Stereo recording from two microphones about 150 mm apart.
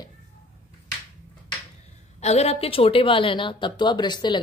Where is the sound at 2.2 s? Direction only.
45° left (ahead or behind).